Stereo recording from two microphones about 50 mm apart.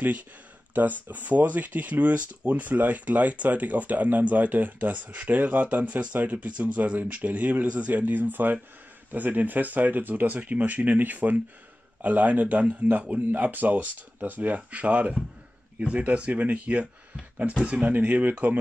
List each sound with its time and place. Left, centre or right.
0.7 s speech: right
17.9 s speech: right